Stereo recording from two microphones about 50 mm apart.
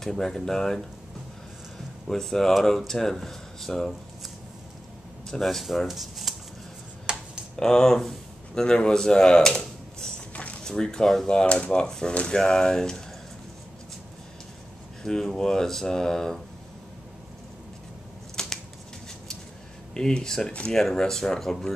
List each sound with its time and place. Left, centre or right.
0.0 s speech: centre
2.0 s speech: centre
5.4 s speech: centre
7.1 s computer keyboard: centre
7.5 s speech: centre
11.2 s speech: centre
15.0 s speech: centre
18.3 s shuffling cards: centre
19.9 s speech: centre